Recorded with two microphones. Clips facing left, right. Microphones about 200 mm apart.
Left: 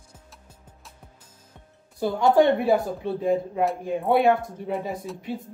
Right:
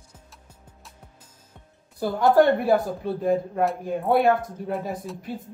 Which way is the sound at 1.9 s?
Centre (ahead or behind).